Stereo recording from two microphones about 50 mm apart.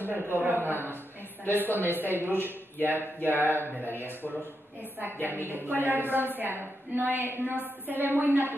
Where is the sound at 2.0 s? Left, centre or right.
Right.